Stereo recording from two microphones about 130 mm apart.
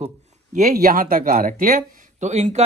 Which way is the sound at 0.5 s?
90° right.